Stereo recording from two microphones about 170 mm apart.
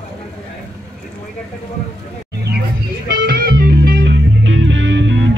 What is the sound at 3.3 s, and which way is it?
Music, 65° right (ahead or behind).